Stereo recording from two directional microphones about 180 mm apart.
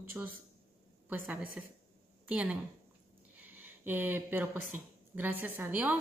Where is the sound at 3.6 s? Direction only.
10° right (ahead or behind).